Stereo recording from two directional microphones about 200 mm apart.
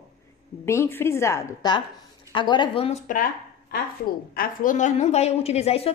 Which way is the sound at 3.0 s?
45° left (ahead or behind).